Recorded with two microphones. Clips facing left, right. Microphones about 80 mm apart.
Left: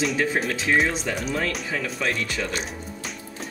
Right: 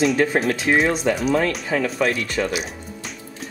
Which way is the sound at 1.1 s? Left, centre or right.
Right.